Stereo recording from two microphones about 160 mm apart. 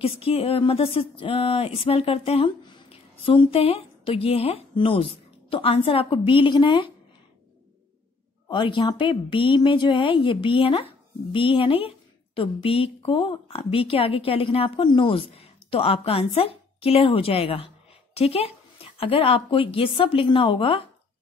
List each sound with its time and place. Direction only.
0.0 s speech: 35° left (ahead or behind)
8.5 s speech: 30° left (ahead or behind)